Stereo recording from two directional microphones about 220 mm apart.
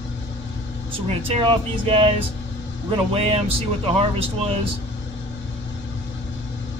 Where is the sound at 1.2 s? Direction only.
25° right (ahead or behind).